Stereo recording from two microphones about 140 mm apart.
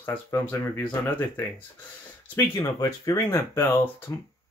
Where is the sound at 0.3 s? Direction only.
15° left (ahead or behind).